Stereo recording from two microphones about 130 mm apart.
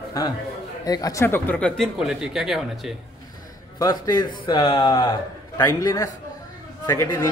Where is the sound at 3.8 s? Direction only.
35° left (ahead or behind).